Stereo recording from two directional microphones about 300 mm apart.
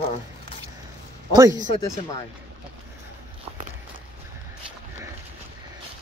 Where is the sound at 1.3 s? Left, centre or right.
Centre.